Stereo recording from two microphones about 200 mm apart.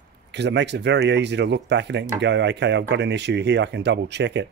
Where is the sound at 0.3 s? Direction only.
60° right (ahead or behind).